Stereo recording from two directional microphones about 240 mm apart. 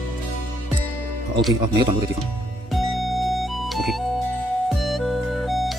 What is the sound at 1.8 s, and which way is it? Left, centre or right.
Speech, centre.